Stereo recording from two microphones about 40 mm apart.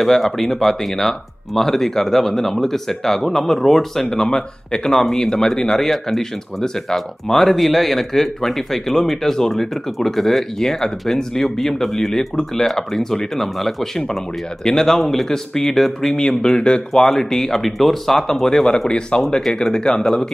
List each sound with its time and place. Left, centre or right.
0.0 s speech: centre
18.9 s speech: left